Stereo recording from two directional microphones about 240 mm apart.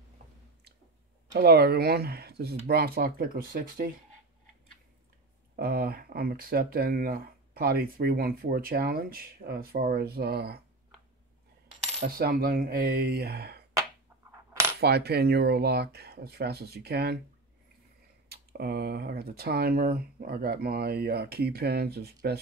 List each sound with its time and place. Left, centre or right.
1.3 s speech: right
5.6 s speech: right
12.0 s speech: right
14.8 s speech: right
18.3 s speech: right